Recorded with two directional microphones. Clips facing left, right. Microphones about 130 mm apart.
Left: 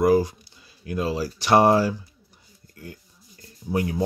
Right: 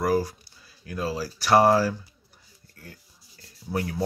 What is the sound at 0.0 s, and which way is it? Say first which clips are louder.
Speech: left 5 dB; 20° left (ahead or behind).